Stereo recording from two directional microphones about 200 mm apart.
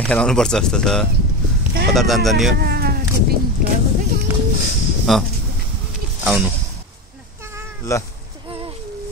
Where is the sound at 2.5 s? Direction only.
50° right (ahead or behind).